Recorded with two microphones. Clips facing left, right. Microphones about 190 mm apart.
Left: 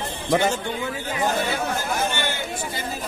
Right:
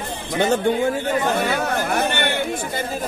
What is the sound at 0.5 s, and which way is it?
Chatter, 50° right (ahead or behind).